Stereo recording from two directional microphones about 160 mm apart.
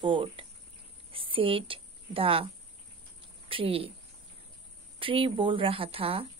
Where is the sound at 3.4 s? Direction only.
35° right (ahead or behind).